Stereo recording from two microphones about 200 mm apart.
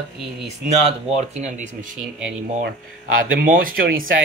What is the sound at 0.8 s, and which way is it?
Speech, 35° right (ahead or behind).